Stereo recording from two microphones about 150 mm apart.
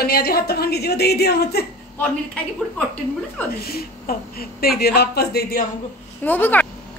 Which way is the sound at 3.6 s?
90° left.